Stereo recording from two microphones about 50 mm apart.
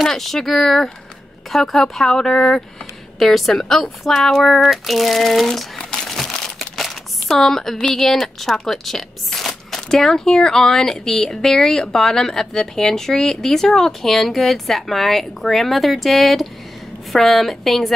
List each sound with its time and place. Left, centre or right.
0.0 s speech: centre
5.8 s crumpling: centre
6.3 s a sound: centre
8.6 s speech: centre